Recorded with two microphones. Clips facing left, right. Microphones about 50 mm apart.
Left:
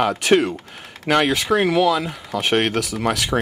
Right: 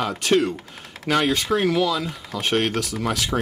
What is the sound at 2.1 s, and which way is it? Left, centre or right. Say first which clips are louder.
Speech: left 3 dB; centre.